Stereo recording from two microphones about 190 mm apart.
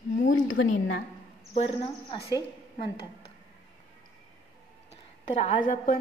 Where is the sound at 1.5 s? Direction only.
30° left (ahead or behind).